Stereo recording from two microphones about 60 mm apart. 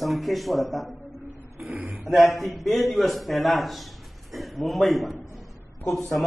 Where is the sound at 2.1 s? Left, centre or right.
Centre.